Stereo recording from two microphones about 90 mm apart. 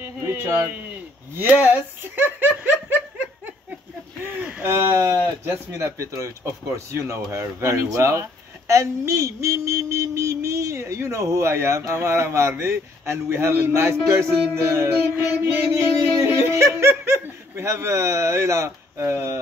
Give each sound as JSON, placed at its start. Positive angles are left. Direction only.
{"t": 0.0, "sound": "speech", "side_deg": -25}
{"t": 4.2, "sound": "a sound", "side_deg": -15}
{"t": 4.6, "sound": "a woman's voice", "side_deg": -25}
{"t": 16.3, "sound": "speech", "side_deg": -30}